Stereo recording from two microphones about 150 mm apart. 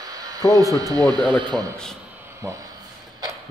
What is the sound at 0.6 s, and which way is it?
A man's voice, 25° right (ahead or behind).